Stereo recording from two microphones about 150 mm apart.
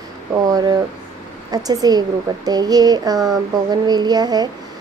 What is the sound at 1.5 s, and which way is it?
Speech, 25° right (ahead or behind).